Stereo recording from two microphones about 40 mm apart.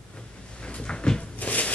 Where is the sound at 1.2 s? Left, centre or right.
Left.